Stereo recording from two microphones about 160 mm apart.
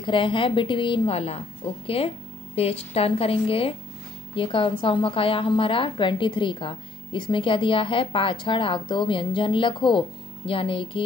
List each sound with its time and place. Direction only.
0.0 s a woman's voice: 30° left (ahead or behind)